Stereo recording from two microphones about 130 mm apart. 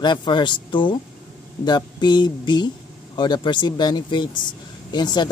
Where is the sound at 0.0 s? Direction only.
35° left (ahead or behind).